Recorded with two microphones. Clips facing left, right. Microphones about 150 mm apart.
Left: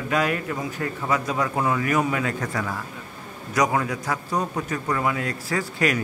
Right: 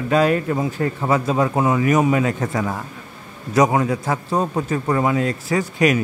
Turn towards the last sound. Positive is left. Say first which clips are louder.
# right 6 dB
turn(degrees=-20)  # may be behind; listen again after turning